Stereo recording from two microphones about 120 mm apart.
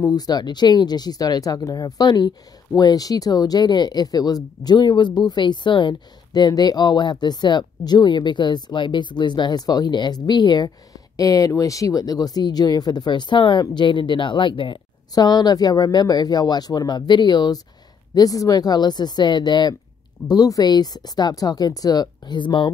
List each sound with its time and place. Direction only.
0.0 s speech: 35° left (ahead or behind)